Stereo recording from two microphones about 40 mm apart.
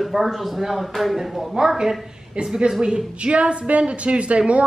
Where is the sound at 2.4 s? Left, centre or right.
Right.